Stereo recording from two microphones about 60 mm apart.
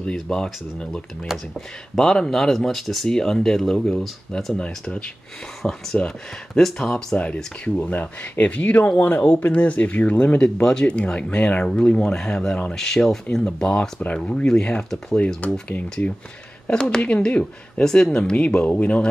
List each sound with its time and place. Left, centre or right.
0.0 s speech: centre
1.2 s speech: centre
2.0 s speech: centre
4.6 s speech: centre
5.6 s speech: centre
7.6 s speech: left
13.4 s speech: centre
17.0 s speech: centre